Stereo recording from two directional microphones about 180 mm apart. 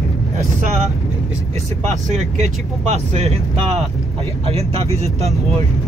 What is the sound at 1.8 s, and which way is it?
Speech, 40° right (ahead or behind).